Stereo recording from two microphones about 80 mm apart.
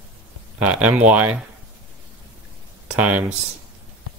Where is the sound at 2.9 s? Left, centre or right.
Centre.